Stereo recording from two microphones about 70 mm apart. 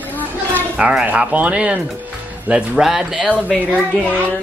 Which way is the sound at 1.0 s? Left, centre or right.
Right.